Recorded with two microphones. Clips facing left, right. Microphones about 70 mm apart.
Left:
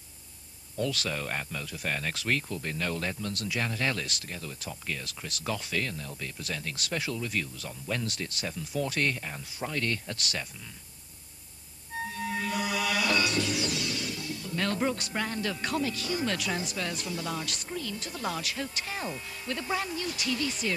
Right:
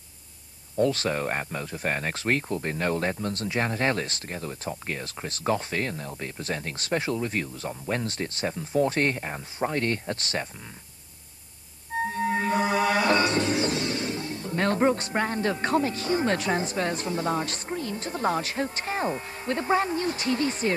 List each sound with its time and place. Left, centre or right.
0.7 s speech: right
12.0 s music: right